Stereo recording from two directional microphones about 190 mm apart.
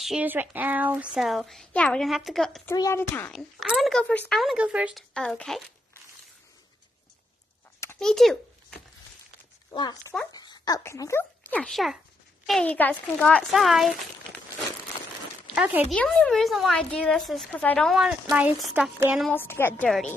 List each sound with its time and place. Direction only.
0.0 s speech: 5° right (ahead or behind)
2.7 s speech: 15° left (ahead or behind)
8.0 s a child's voice: centre (ahead or behind)
9.7 s speech: 20° left (ahead or behind); by 14.4 s centre (ahead or behind)
15.5 s speech: 10° right (ahead or behind)
15.9 s speech: 5° left (ahead or behind)
19.3 s a woman's voice: 10° left (ahead or behind)